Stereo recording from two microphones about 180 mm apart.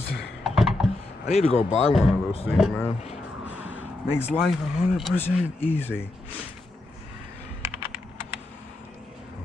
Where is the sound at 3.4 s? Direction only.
10° right (ahead or behind).